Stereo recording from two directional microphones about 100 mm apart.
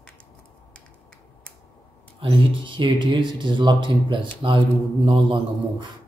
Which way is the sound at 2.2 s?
55° right (ahead or behind).